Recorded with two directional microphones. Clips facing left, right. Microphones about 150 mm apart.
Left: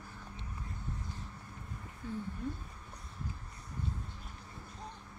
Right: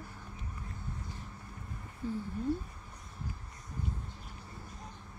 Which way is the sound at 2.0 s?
35° right (ahead or behind).